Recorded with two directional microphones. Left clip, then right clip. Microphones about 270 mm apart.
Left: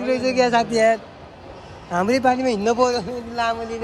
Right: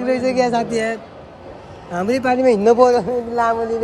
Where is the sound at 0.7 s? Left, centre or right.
Centre.